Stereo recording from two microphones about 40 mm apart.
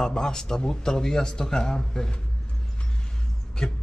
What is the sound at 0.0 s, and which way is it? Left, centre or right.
Speech, centre.